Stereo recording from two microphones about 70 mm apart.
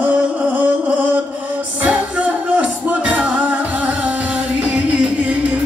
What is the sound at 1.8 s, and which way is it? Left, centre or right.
Music, centre.